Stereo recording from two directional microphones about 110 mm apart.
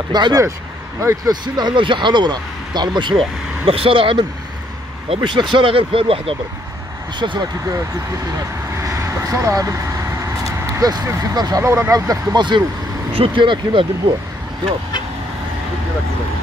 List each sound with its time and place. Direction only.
0.1 s speech: 40° right (ahead or behind); by 6.3 s 55° right (ahead or behind)
7.2 s speech: 45° right (ahead or behind)
8.8 s vehicle: 30° right (ahead or behind)
11.3 s speech: 40° right (ahead or behind)
11.6 s speech: 25° right (ahead or behind)
12.1 s speech: 40° right (ahead or behind)